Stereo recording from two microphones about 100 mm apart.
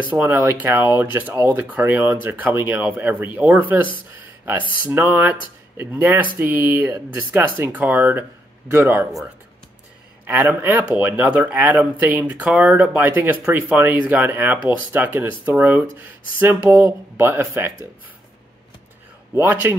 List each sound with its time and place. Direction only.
0.2 s speech: 20° right (ahead or behind)
10.2 s speech: 20° right (ahead or behind)
19.3 s speech: 20° right (ahead or behind)